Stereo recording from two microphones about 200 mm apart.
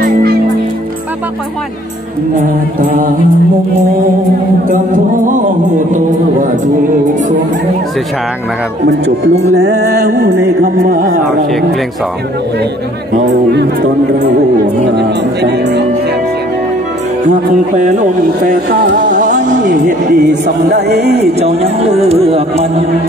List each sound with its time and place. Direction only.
0.0 s music: 50° right (ahead or behind)
8.8 s music: 55° right (ahead or behind)
15.0 s music: 55° right (ahead or behind)
18.7 s speech: 45° right (ahead or behind)
21.4 s speech: 30° right (ahead or behind)